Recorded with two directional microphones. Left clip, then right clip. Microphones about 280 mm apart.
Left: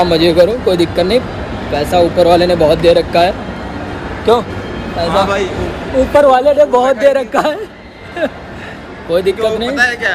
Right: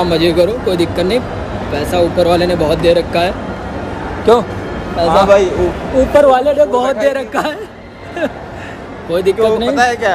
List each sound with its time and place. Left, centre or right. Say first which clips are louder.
0.0 s a man's voice: left 3 dB; centre
6.1 s speech: left 1 dB; centre
9.1 s a man's voice: right 1 dB; centre